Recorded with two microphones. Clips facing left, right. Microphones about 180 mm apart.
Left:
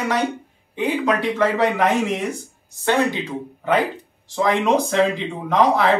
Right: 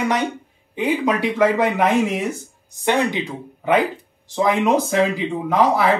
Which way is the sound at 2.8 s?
20° right (ahead or behind).